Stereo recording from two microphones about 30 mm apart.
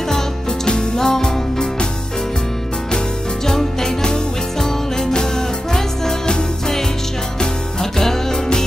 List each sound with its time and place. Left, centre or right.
0.7 s music: left
3.4 s music: centre
7.3 s music: centre